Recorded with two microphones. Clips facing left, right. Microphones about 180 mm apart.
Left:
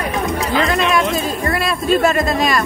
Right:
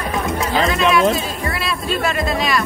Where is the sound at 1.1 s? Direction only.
45° left (ahead or behind).